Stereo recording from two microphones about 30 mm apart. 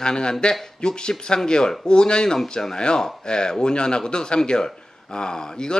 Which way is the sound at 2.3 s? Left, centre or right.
Centre.